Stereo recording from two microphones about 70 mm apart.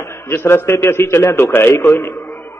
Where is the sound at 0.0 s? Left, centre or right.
Left.